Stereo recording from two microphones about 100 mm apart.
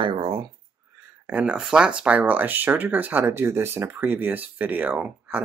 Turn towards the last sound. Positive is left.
turn(degrees=-15)  # may be behind; listen again after turning